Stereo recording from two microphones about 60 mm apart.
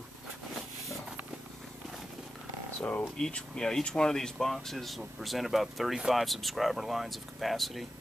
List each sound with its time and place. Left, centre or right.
2.8 s speech: left
3.2 s speech: centre